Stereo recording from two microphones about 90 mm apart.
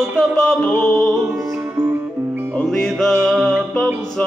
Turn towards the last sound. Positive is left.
turn(degrees=5)  # may be behind; listen again after turning